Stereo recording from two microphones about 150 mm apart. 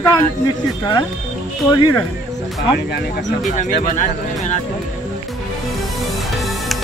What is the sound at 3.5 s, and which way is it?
Speech, 55° left (ahead or behind).